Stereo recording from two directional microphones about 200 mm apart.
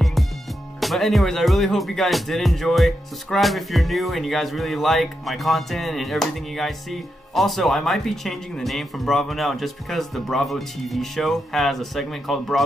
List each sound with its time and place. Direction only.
0.7 s speech: centre (ahead or behind)